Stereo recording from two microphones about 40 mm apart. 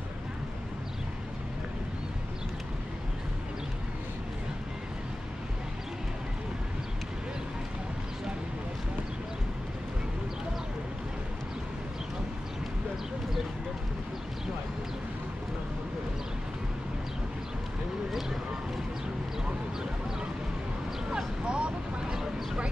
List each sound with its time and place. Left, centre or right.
21.5 s vehicle: right